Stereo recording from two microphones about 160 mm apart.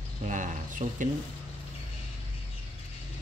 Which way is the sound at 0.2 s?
50° right (ahead or behind).